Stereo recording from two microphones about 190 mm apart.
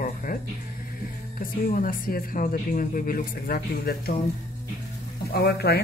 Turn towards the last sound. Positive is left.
turn(degrees=55)  # may be behind; listen again after turning